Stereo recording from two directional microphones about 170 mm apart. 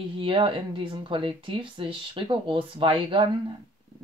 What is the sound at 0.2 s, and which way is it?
Speech, 30° right (ahead or behind).